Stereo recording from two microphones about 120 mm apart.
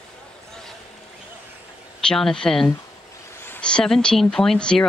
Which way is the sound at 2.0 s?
5° left (ahead or behind).